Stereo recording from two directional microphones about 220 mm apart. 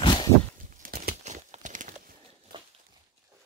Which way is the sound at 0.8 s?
40° right (ahead or behind).